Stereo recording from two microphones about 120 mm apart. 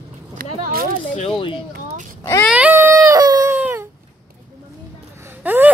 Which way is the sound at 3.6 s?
15° right (ahead or behind).